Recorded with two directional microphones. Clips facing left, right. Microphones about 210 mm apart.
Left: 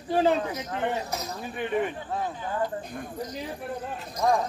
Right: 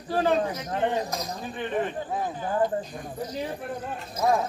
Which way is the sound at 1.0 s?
15° right (ahead or behind).